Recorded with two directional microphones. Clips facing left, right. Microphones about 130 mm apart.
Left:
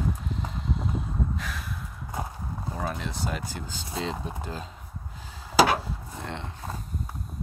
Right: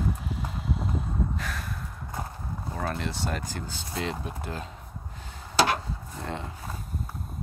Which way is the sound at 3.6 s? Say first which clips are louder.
Even; 20° left (ahead or behind).